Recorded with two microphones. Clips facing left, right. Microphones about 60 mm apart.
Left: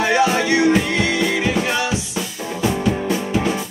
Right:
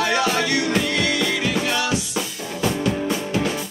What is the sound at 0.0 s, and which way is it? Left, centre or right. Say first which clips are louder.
Music: left 4 dB; left.